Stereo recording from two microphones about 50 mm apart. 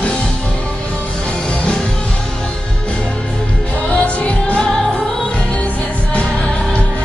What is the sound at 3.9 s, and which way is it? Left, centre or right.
Music, left.